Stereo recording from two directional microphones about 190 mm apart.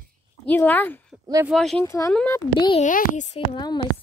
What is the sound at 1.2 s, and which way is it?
Speech, 20° right (ahead or behind).